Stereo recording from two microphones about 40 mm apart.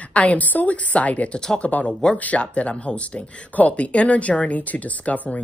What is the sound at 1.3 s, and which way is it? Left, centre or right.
Speech, centre.